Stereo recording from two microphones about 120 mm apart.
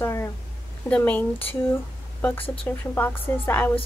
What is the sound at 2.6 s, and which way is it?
A woman's voice, 15° left (ahead or behind).